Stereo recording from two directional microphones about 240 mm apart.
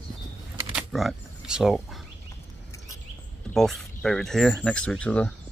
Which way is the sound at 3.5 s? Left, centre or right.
Centre.